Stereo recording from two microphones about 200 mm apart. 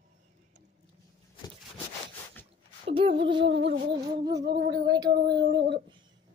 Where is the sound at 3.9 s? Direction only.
20° right (ahead or behind).